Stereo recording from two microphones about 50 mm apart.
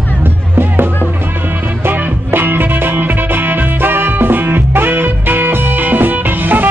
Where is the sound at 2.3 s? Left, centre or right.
Right.